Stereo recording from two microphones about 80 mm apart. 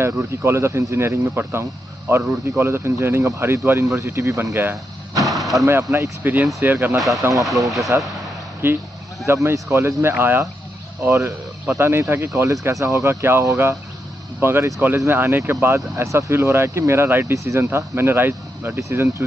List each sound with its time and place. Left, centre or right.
0.0 s speech: right
5.2 s artillery fire: centre
5.7 s speech: right
6.2 s speech: right
7.0 s speech: centre
8.6 s speech: right
15.6 s speech: right